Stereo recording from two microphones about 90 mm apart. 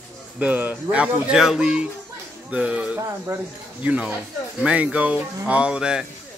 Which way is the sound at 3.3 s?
25° right (ahead or behind).